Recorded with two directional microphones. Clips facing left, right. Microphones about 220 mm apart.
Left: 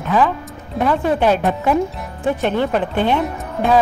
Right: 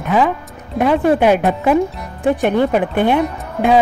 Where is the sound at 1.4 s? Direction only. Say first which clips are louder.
Right 3 dB; 5° right (ahead or behind).